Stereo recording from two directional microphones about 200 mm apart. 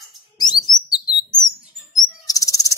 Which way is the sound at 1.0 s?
20° left (ahead or behind).